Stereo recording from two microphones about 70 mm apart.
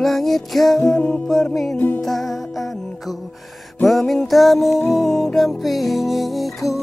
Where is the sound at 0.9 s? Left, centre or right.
Centre.